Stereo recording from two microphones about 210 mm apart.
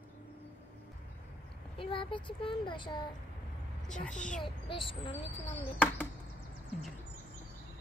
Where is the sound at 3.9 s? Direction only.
5° left (ahead or behind).